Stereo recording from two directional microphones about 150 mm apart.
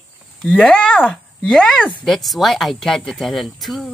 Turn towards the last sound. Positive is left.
turn(degrees=0)  # may be behind; listen again after turning